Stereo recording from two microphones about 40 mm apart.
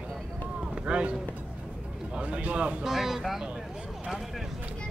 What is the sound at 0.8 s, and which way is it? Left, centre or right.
Speech, right.